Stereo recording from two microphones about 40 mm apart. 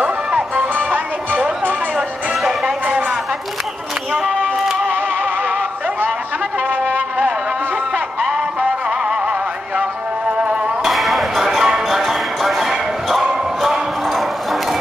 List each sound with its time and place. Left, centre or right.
0.7 s music: right
10.3 s music: right
10.8 s music: centre
11.4 s music: centre
11.9 s music: centre